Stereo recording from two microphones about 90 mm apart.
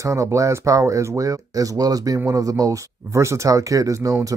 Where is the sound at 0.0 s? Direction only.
35° right (ahead or behind).